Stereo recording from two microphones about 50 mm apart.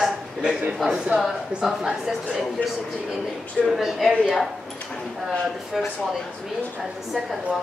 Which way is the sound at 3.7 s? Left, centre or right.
Centre.